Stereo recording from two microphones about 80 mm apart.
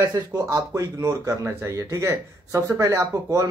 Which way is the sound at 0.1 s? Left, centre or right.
Right.